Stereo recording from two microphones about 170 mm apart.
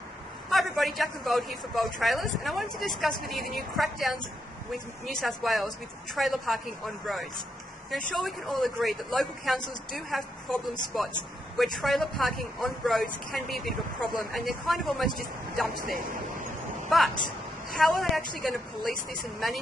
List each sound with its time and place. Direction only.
0.5 s speech: centre (ahead or behind)
8.1 s speech: centre (ahead or behind)
15.8 s speech: 55° right (ahead or behind)
17.6 s speech: centre (ahead or behind)